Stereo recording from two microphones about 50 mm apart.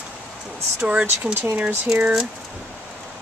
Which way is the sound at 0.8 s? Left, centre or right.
Right.